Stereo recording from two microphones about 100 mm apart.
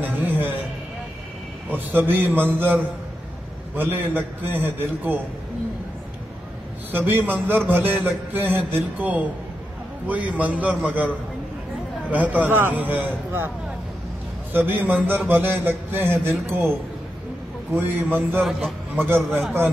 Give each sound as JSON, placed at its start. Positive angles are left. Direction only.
{"t": 0.0, "sound": "music", "side_deg": -20}
{"t": 1.7, "sound": "a man's voice", "side_deg": -20}
{"t": 6.9, "sound": "a man's voice", "side_deg": -20}
{"t": 12.1, "sound": "a man's voice", "side_deg": -15}
{"t": 14.5, "sound": "a man's voice", "side_deg": -20}
{"t": 17.7, "sound": "a man's voice", "side_deg": -20}
{"t": 18.4, "sound": "a man's voice", "side_deg": 0}
{"t": 18.9, "sound": "a man's voice", "side_deg": -20}